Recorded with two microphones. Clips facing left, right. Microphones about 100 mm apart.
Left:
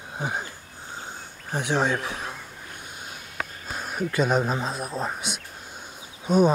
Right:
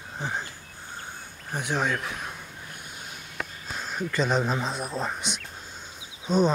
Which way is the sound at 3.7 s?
10° left (ahead or behind).